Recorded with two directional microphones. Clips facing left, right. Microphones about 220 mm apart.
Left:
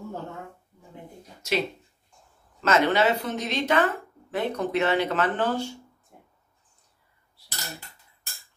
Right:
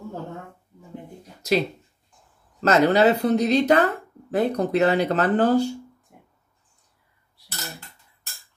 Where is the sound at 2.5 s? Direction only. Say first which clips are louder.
Right 4 dB; 35° right (ahead or behind).